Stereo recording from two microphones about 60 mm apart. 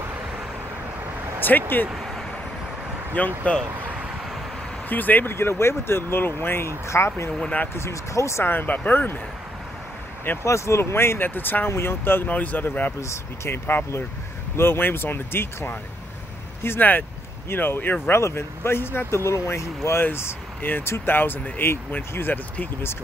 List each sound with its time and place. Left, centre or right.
1.5 s speech: left
3.1 s speech: left
4.8 s speech: left
5.3 s speech: left
7.7 s speech: left
8.5 s speech: left
10.4 s speech: left
12.3 s speech: left
13.0 s speech: left
18.1 s speech: left